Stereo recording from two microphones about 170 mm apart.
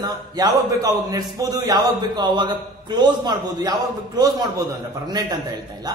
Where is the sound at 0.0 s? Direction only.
25° right (ahead or behind).